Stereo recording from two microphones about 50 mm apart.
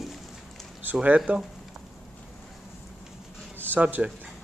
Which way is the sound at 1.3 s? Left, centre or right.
Right.